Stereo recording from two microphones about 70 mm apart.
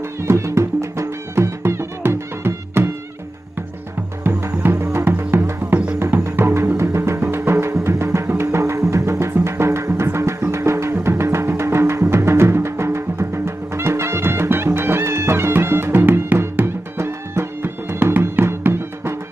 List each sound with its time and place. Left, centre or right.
0.2 s music: right
4.6 s music: right